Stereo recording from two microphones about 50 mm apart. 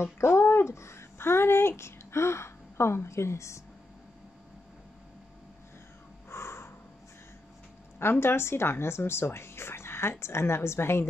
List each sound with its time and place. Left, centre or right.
0.0 s speech: left
6.3 s crow: left
8.0 s speech: left